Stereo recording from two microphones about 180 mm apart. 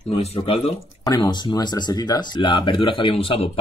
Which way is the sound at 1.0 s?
25° left (ahead or behind).